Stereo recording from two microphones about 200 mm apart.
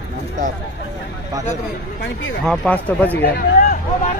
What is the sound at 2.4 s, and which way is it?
Speech, 5° left (ahead or behind).